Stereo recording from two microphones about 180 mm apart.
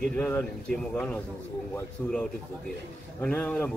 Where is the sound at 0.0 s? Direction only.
5° left (ahead or behind).